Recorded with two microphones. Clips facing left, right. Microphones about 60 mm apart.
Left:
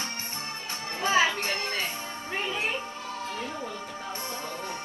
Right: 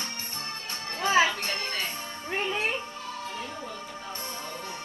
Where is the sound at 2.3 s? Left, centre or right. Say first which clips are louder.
Right 2 dB; centre.